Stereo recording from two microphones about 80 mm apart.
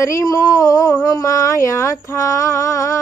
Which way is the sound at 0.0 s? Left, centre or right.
Left.